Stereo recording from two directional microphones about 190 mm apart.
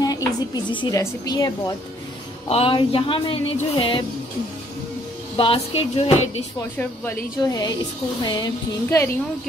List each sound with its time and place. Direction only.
0.0 s a woman's voice: 20° left (ahead or behind)
2.5 s speech: 30° left (ahead or behind)
5.4 s speech: 30° left (ahead or behind)
6.8 s speech: 10° left (ahead or behind)
8.2 s speech: 20° left (ahead or behind)